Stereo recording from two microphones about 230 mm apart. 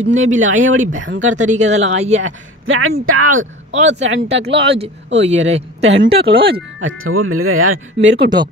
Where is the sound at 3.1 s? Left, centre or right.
Right.